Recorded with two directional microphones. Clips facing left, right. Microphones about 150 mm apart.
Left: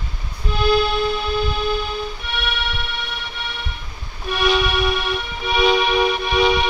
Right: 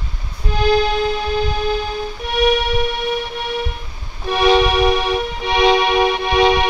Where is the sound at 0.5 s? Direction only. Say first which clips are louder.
Right 2 dB; 40° right (ahead or behind).